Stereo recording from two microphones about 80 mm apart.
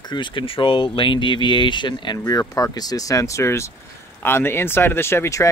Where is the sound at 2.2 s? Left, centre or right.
Left.